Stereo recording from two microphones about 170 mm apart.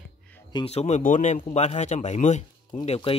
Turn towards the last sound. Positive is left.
turn(degrees=35)  # may be behind; listen again after turning